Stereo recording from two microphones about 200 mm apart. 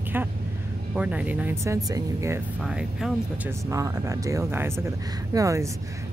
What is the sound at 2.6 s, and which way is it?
Speech, centre (ahead or behind).